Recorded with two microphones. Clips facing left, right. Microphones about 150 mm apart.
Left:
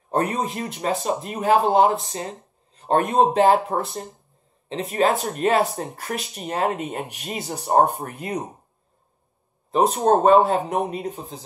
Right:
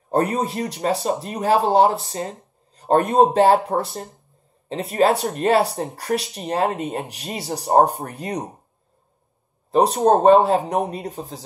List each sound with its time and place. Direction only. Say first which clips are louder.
0.1 s speech: right 3 dB; 35° right (ahead or behind)
9.9 s speech: right 2 dB; 35° right (ahead or behind)